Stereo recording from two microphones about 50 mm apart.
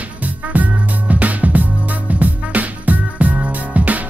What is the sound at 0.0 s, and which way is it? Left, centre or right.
Music, right.